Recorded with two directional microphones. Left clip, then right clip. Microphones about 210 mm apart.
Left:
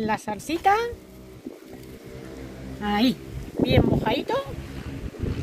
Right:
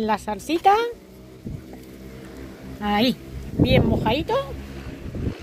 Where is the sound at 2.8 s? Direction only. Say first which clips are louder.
Right 2 dB; 35° right (ahead or behind).